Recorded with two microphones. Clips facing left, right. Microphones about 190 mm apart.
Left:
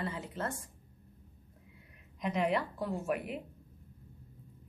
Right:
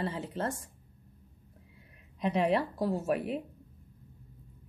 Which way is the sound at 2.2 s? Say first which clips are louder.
Right 4 dB; 35° right (ahead or behind).